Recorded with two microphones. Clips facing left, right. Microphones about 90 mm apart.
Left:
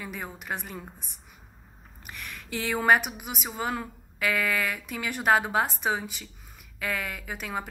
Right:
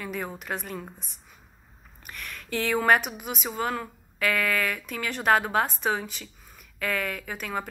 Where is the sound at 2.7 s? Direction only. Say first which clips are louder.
Even; 15° left (ahead or behind).